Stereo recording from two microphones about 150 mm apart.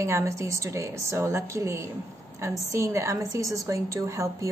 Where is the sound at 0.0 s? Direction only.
20° right (ahead or behind).